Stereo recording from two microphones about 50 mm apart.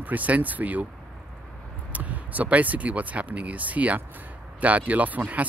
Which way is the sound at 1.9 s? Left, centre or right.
Right.